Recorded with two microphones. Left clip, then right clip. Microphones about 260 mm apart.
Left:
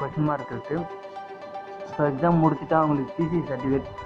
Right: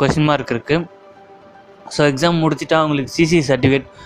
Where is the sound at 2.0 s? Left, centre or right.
Right.